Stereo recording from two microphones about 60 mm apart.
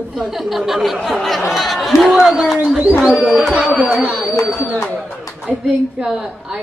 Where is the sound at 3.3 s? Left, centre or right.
Centre.